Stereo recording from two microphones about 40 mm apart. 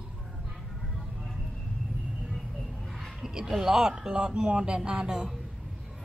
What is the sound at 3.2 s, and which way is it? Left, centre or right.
Speech, centre.